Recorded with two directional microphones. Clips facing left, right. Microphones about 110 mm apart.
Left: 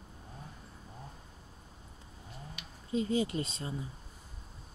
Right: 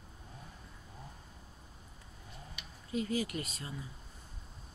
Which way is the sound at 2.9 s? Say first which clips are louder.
Left 4 dB; 25° left (ahead or behind).